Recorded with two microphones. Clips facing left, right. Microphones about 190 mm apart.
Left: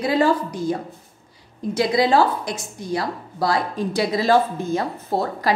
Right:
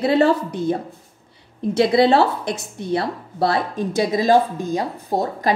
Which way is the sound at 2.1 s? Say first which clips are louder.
Right 1 dB; 60° right (ahead or behind).